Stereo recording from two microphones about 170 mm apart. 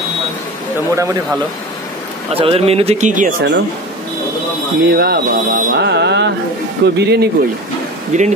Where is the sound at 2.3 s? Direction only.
35° right (ahead or behind).